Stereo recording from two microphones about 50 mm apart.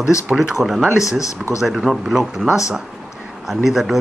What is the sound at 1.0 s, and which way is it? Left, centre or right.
Speech, left.